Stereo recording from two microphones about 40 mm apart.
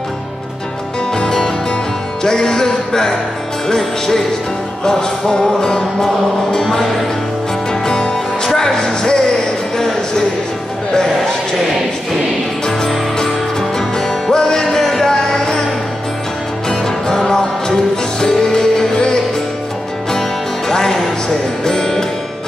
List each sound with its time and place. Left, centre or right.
1.1 s music: centre
9.8 s a sound: centre
13.2 s music: centre
16.6 s music: centre